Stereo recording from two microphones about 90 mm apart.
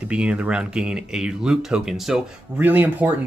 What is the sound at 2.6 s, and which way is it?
Speech, 20° right (ahead or behind).